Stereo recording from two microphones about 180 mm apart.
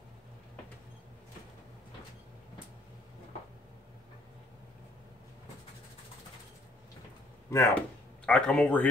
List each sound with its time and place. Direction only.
7.5 s speech: 15° left (ahead or behind)
8.3 s speech: 5° left (ahead or behind)